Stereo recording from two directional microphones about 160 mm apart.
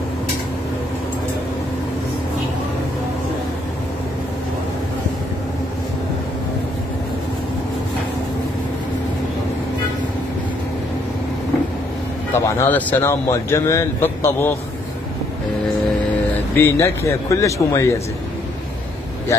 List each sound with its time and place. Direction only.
12.4 s a man's voice: 15° left (ahead or behind)
16.5 s a man's voice: 15° left (ahead or behind)